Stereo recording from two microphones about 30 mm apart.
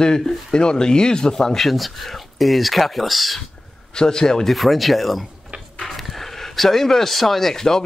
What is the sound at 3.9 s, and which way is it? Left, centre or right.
Speech, left.